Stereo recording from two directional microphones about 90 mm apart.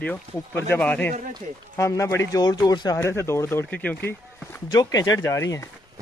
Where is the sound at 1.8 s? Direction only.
30° left (ahead or behind).